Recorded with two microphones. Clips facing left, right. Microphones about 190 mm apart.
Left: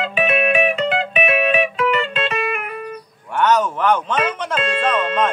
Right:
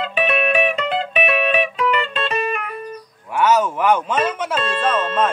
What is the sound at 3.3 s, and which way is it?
Music, 10° right (ahead or behind).